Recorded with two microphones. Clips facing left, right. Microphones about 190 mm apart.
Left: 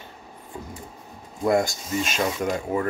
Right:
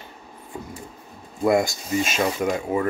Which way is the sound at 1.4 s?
10° right (ahead or behind).